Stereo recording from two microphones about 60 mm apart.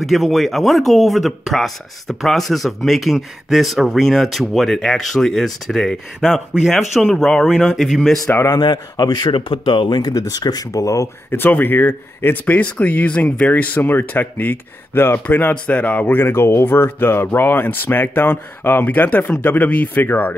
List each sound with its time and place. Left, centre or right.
0.0 s speech: centre
7.1 s speech: centre
7.6 s speech: centre
9.0 s a man's voice: left
11.2 s speech: left